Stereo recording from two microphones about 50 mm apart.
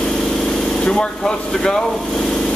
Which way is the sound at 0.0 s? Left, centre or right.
Centre.